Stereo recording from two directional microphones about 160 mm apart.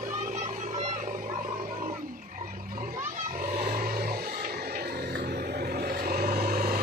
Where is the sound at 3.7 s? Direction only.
65° right (ahead or behind).